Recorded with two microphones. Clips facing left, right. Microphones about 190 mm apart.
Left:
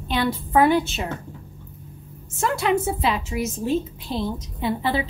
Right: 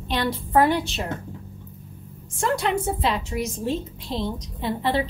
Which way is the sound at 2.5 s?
5° left (ahead or behind).